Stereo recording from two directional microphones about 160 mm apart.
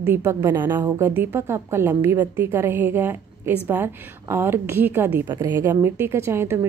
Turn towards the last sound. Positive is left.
turn(degrees=-15)  # may be behind; listen again after turning